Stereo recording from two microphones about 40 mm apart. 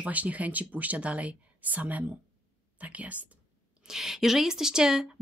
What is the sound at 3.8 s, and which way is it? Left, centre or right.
Speech, centre.